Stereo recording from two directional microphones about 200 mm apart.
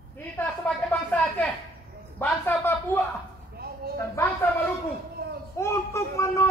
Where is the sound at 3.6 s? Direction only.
50° right (ahead or behind).